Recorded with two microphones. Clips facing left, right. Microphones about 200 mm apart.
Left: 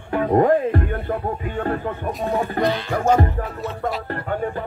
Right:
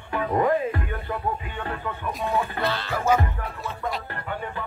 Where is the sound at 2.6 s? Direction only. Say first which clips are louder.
Left 6 dB; 15° left (ahead or behind).